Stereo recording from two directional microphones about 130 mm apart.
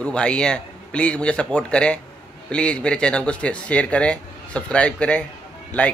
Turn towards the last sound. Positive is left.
turn(degrees=10)  # may be behind; listen again after turning